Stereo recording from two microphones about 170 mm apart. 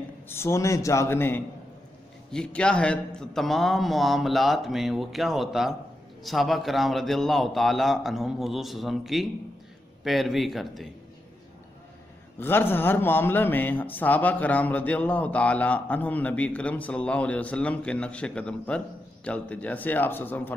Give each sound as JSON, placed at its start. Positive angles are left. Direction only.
{"t": 0.3, "sound": "a man's voice", "side_deg": 15}
{"t": 12.4, "sound": "speech", "side_deg": 10}